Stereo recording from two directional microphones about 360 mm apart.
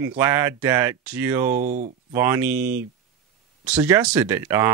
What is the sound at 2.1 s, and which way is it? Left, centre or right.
Speech, centre.